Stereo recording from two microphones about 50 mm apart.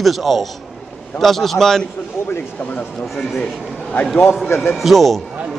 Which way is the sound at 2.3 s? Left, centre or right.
Left.